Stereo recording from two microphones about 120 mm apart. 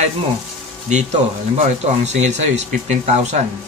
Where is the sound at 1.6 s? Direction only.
75° right (ahead or behind).